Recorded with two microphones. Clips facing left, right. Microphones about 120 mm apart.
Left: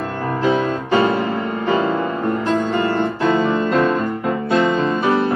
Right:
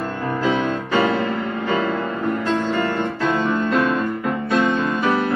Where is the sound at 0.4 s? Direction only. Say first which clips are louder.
Left 3 dB; 35° left (ahead or behind).